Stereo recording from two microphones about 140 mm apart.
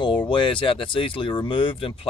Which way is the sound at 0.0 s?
35° left (ahead or behind).